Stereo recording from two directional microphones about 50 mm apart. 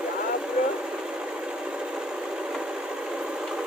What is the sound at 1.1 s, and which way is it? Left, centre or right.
Wood, centre.